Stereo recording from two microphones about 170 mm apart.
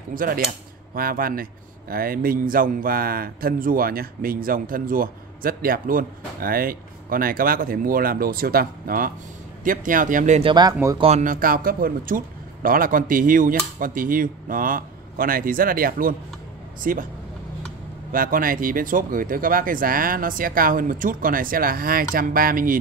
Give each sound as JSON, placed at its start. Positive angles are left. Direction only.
{"t": 0.1, "sound": "speech", "side_deg": -55}
{"t": 10.5, "sound": "speech", "side_deg": -20}
{"t": 11.0, "sound": "speech", "side_deg": -40}
{"t": 11.3, "sound": "speech", "side_deg": -55}
{"t": 18.1, "sound": "speech", "side_deg": -55}